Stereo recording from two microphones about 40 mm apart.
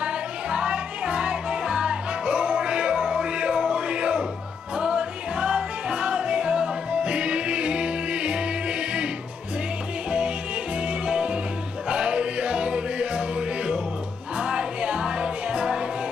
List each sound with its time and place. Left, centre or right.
0.0 s music: right
10.9 s music: right
14.4 s music: right